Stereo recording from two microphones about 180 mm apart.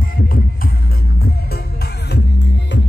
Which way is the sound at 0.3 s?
55° left (ahead or behind).